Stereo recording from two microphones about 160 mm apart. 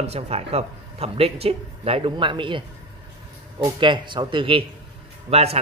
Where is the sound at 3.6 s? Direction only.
30° right (ahead or behind).